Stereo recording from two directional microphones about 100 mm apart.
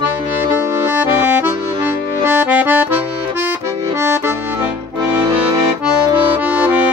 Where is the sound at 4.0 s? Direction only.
25° right (ahead or behind).